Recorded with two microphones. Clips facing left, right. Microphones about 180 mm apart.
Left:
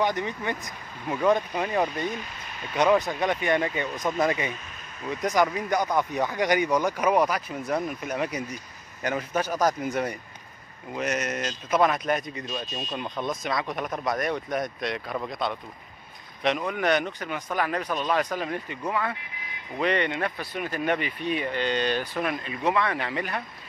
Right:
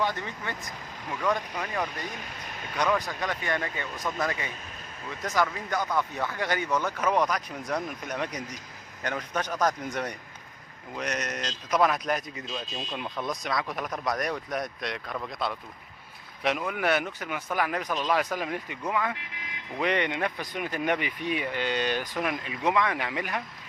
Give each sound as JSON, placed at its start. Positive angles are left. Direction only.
{"t": 0.0, "sound": "speech", "side_deg": 15}